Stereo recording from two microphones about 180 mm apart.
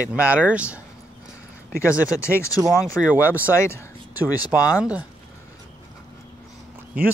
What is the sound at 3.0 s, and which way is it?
Speech, 10° right (ahead or behind).